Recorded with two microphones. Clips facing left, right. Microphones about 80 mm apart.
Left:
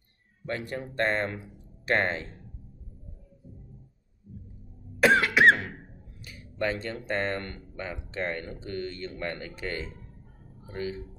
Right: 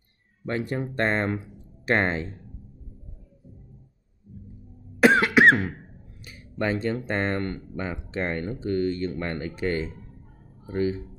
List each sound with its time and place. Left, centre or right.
0.5 s speech: right
5.0 s cough: right
6.2 s speech: right